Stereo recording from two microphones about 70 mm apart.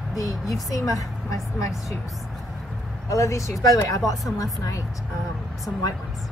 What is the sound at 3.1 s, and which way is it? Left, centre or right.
A woman's voice, left.